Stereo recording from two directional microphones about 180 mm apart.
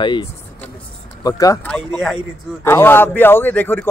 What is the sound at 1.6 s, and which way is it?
Speech, 5° left (ahead or behind).